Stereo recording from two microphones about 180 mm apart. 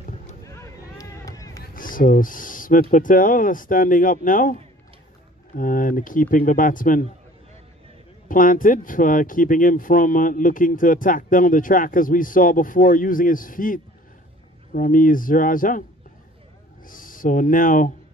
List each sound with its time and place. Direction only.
0.5 s vehicle: 15° left (ahead or behind)
1.6 s speech: 50° left (ahead or behind)
5.6 s speech: 50° left (ahead or behind)
8.3 s speech: 50° left (ahead or behind)
16.8 s speech: 50° left (ahead or behind)